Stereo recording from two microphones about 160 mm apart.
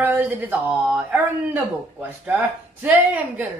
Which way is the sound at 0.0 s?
10° right (ahead or behind).